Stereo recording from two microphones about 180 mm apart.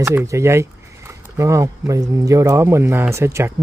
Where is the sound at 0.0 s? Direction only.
15° right (ahead or behind).